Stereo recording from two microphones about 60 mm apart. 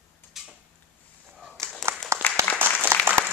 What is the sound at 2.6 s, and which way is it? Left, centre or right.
Applause, right.